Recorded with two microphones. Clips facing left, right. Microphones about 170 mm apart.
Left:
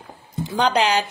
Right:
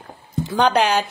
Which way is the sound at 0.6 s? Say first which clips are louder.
Right 1 dB; 55° right (ahead or behind).